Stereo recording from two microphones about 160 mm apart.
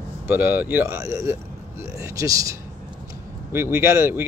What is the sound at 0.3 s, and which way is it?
Speech, 10° right (ahead or behind).